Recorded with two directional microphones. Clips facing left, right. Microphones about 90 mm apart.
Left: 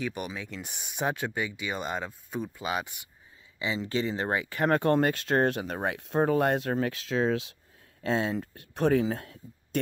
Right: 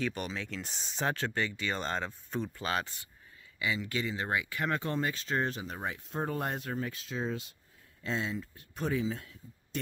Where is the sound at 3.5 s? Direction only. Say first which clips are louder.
Left 4 dB; 25° left (ahead or behind); by 7.5 s 90° left.